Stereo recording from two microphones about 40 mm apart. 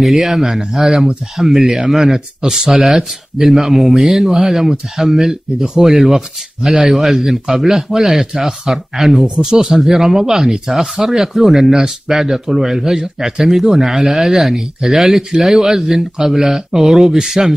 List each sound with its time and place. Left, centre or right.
0.0 s speech: centre